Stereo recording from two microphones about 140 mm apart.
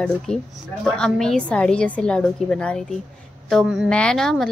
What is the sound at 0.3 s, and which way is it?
A woman's voice, 5° left (ahead or behind).